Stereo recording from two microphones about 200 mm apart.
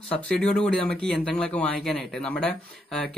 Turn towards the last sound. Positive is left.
turn(degrees=5)  # may be behind; listen again after turning